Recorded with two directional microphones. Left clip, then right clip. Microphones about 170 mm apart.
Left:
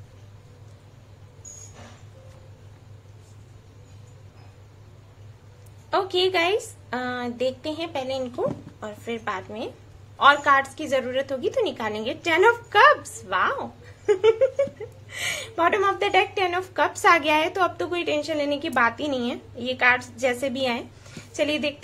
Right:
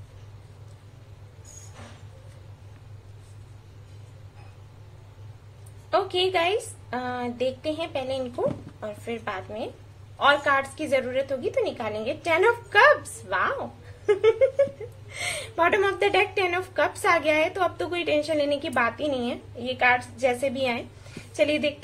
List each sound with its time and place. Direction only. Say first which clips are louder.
5.9 s a woman's voice: left 1 dB; 20° left (ahead or behind)
15.7 s speech: left 1 dB; centre (ahead or behind); by 17.6 s 25° left (ahead or behind)
17.7 s speech: even; 15° left (ahead or behind)